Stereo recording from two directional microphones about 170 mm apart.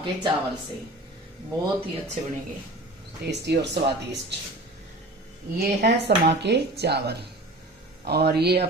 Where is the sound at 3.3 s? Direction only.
80° right.